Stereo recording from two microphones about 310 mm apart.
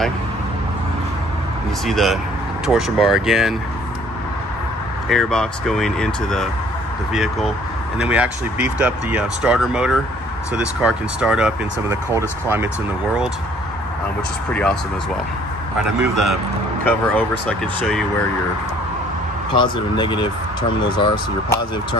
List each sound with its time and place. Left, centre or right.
1.9 s speech: centre
5.0 s speech: centre
14.5 s speech: centre
16.0 s speech: centre
19.5 s speech: centre